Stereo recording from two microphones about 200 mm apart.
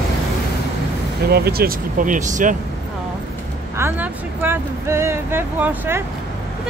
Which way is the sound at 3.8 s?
10° right (ahead or behind).